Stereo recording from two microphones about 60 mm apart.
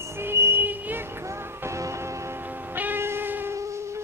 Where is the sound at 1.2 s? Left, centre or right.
Right.